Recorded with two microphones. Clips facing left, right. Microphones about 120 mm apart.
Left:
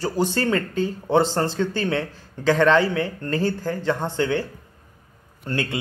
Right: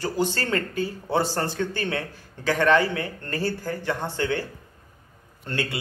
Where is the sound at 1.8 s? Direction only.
15° right (ahead or behind).